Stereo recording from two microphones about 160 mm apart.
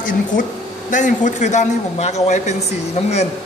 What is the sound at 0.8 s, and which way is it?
A woman's voice, 50° left (ahead or behind).